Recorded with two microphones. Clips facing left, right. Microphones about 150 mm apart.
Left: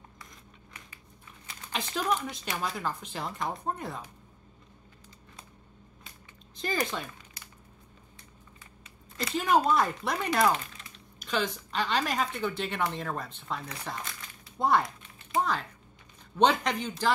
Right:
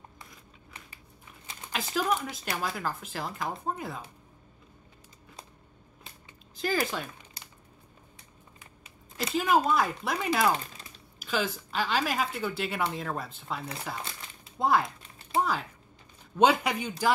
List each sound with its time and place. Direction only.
1.7 s speech: 5° right (ahead or behind)
6.5 s speech: 5° right (ahead or behind)
9.3 s speech: centre (ahead or behind)
15.0 s a sound: 35° right (ahead or behind)
16.3 s speech: 10° right (ahead or behind)